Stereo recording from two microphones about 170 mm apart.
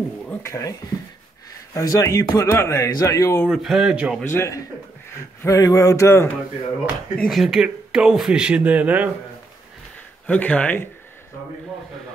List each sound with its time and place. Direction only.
0.3 s a man's voice: 15° left (ahead or behind)
3.4 s speech: centre (ahead or behind)
4.2 s a man's voice: 15° left (ahead or behind)
7.2 s speech: centre (ahead or behind)
10.2 s a man's voice: 10° left (ahead or behind)